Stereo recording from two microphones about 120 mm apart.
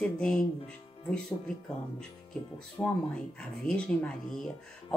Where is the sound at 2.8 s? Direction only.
15° left (ahead or behind).